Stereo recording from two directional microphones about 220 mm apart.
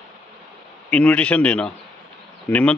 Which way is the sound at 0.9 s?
5° left (ahead or behind).